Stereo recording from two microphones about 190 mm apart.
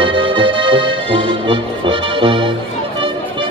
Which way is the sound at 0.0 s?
25° right (ahead or behind).